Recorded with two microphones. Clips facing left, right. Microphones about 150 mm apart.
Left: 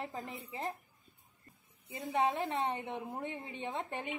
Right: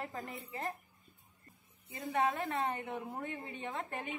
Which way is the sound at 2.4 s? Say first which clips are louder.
Left 1 dB; centre (ahead or behind).